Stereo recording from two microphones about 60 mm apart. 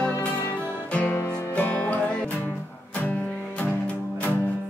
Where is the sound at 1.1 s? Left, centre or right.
Left.